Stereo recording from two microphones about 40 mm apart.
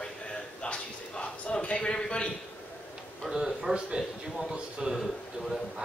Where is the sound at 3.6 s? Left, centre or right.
Centre.